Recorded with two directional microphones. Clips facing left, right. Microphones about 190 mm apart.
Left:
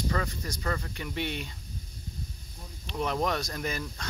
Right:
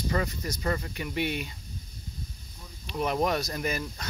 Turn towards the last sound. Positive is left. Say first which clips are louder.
# right 2 dB
turn(degrees=-10)  # may be behind; listen again after turning